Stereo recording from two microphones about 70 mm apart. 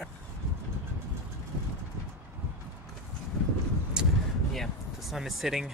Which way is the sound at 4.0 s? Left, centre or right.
Centre.